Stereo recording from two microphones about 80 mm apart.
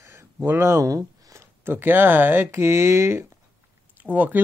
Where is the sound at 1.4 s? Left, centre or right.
Right.